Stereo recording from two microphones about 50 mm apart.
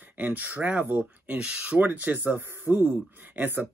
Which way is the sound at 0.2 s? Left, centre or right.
Right.